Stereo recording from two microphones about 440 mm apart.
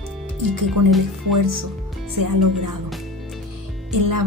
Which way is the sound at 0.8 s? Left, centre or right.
Right.